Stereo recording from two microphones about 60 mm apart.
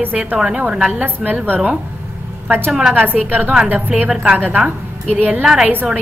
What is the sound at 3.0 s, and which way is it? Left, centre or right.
A woman's voice, right.